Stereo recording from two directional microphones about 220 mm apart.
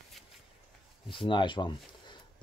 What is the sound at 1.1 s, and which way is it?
Speech, 20° left (ahead or behind).